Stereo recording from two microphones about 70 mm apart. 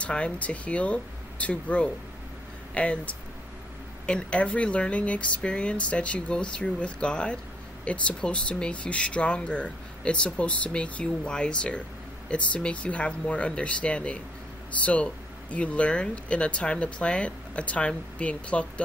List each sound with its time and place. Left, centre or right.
0.0 s speech: centre
15.5 s speech: centre